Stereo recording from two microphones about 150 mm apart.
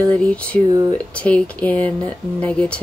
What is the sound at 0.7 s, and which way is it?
Speech, 25° right (ahead or behind).